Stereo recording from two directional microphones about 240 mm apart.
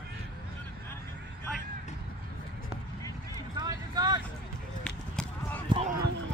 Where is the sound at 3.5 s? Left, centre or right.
Centre.